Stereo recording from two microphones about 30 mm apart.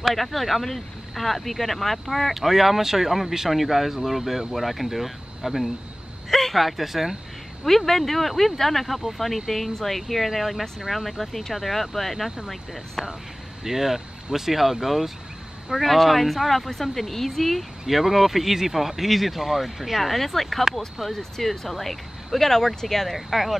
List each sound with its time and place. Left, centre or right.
0.1 s speech: centre
6.3 s speech: centre
7.6 s speech: centre
13.7 s speech: centre
17.8 s speech: centre
23.1 s speech: centre